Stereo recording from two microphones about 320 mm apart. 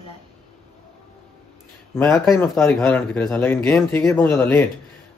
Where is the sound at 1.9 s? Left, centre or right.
Centre.